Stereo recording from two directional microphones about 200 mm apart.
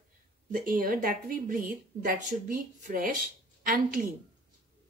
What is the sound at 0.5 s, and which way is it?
Speech, 45° right (ahead or behind).